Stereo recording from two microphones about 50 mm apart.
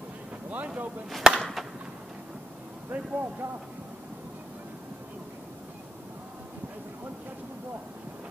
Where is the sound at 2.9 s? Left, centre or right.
Right.